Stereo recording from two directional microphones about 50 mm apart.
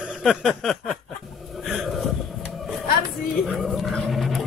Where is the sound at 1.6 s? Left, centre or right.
Centre.